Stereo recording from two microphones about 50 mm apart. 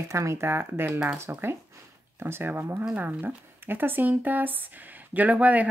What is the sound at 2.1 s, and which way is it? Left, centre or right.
Speech, right.